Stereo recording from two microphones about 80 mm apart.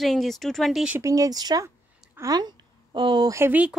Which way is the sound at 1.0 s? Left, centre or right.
Right.